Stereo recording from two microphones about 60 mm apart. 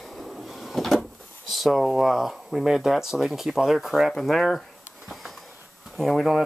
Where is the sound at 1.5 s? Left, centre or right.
Centre.